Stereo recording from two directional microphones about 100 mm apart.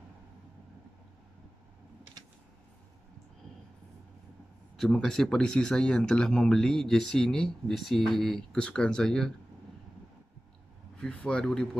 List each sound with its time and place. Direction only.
4.7 s speech: 5° left (ahead or behind)
11.0 s speech: 10° left (ahead or behind)